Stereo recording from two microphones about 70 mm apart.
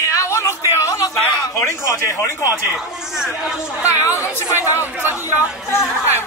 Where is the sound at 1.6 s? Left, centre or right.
Left.